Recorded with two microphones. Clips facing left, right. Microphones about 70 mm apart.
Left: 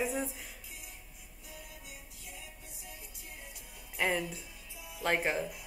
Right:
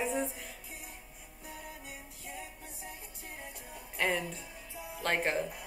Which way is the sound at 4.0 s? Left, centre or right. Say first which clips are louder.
Even; centre.